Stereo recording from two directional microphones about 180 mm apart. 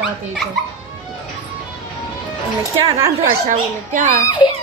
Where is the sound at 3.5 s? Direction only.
45° right (ahead or behind).